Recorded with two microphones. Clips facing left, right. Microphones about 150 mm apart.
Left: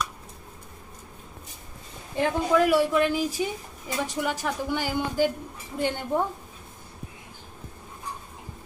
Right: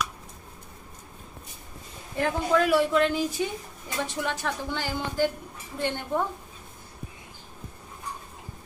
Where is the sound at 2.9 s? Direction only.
5° left (ahead or behind).